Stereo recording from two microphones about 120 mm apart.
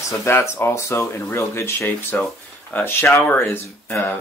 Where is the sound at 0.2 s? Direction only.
20° left (ahead or behind).